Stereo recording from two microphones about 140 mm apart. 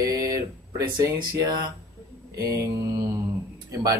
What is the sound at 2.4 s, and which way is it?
Speech, 20° right (ahead or behind).